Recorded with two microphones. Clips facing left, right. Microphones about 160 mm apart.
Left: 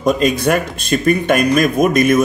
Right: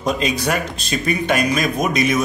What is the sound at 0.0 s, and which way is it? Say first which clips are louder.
A man's voice: left 6 dB; 50° left (ahead or behind).